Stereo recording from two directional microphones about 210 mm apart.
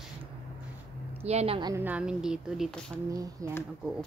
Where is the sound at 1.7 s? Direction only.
10° right (ahead or behind).